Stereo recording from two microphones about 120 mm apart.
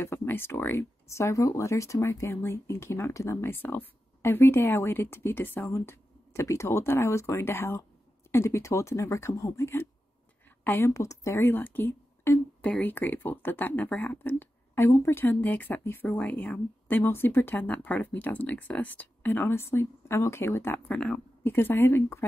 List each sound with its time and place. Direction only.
0.0 s speech: 20° left (ahead or behind)